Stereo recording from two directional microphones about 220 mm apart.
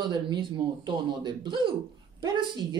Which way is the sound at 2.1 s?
20° right (ahead or behind).